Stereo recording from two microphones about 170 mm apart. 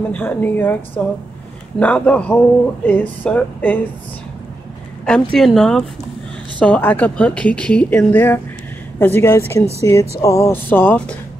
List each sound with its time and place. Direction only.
0.1 s a woman's voice: 10° left (ahead or behind)
5.0 s a woman's voice: 5° left (ahead or behind)